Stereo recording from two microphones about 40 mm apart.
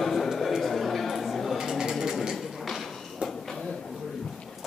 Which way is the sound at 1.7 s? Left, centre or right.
Centre.